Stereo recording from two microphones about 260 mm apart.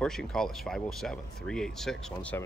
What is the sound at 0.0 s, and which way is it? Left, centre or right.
Speech, centre.